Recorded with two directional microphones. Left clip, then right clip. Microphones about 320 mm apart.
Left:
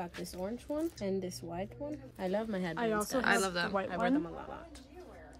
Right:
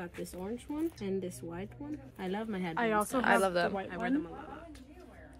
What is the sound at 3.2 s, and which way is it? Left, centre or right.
Speech, centre.